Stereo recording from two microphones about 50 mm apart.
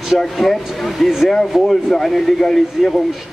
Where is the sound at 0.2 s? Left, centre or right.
Centre.